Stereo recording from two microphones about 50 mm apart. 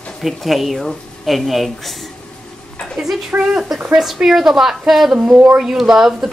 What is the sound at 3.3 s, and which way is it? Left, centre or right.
Speech, right.